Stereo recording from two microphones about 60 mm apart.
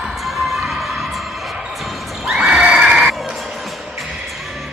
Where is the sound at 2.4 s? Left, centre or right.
Centre.